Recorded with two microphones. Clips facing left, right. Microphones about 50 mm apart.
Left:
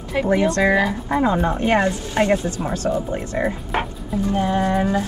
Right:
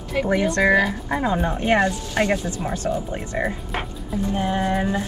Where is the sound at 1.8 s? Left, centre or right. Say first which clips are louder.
Left 1 dB; left.